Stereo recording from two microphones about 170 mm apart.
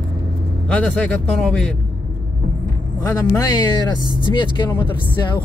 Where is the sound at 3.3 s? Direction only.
20° left (ahead or behind).